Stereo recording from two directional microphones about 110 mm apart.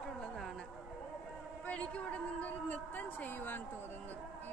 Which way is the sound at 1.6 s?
10° left (ahead or behind).